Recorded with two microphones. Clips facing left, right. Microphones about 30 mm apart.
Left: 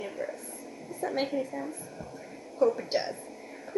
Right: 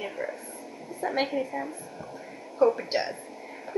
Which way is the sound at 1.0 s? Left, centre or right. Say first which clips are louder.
Right 2 dB; right.